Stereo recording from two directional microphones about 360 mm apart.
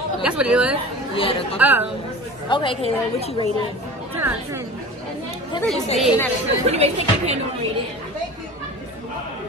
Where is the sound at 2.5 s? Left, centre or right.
Centre.